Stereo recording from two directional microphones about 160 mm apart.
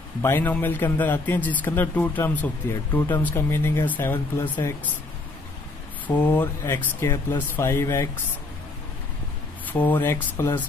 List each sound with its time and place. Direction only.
0.2 s speech: 15° left (ahead or behind)
6.0 s speech: 10° left (ahead or behind)
9.7 s speech: 10° left (ahead or behind)